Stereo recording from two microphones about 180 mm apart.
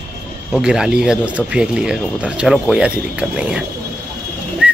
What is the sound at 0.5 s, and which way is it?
Speech, 5° right (ahead or behind).